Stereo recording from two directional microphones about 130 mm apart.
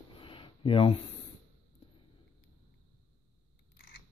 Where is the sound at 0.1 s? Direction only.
40° left (ahead or behind).